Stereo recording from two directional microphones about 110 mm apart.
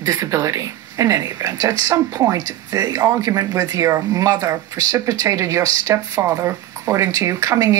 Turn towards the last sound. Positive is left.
turn(degrees=-30)  # may be behind; listen again after turning